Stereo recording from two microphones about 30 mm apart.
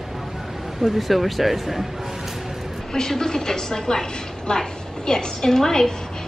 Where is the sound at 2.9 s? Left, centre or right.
Centre.